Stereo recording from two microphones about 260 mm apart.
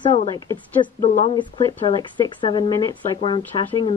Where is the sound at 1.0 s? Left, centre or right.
Left.